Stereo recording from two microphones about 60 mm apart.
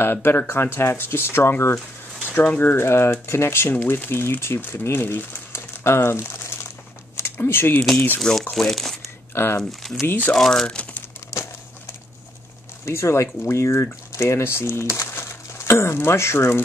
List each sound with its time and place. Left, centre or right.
0.0 s speech: left
2.3 s speech: left
2.7 s speech: left
8.2 s speech: centre
9.3 s speech: left
9.6 s speech: centre
10.0 s speech: left
10.3 s speech: centre
12.8 s speech: left